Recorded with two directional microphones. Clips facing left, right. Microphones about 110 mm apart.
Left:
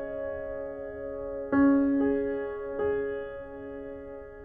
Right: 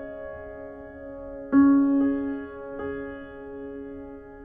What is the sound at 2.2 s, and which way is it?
Music, 30° right (ahead or behind).